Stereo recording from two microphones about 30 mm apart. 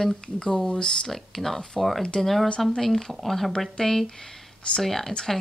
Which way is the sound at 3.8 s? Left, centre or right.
Left.